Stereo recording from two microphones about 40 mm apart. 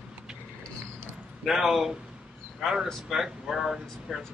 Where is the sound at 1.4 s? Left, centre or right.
Centre.